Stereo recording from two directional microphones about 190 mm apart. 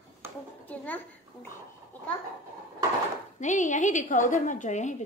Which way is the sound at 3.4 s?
40° left (ahead or behind).